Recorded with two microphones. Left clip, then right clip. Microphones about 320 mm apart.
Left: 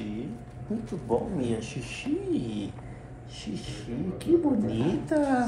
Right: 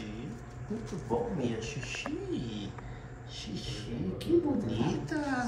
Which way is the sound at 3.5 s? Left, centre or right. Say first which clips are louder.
Even; right.